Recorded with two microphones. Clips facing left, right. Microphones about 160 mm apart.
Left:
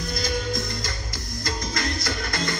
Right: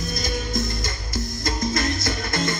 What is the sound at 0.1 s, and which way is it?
Music, 25° right (ahead or behind).